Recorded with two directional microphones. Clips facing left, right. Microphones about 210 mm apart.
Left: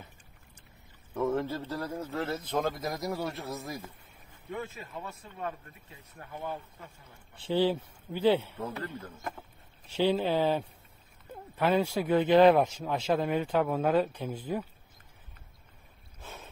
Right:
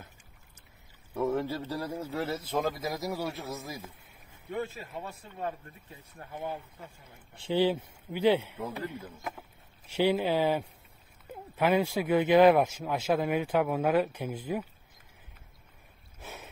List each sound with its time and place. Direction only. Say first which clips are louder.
1.1 s a man's voice: even; 10° right (ahead or behind)
4.5 s speech: right 3 dB; 35° right (ahead or behind)
6.1 s a man's voice: right 1 dB; 20° right (ahead or behind)
16.2 s boat: right 1 dB; 10° right (ahead or behind)